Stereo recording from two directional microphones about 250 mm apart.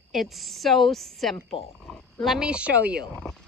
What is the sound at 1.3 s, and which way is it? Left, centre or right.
Speech, left.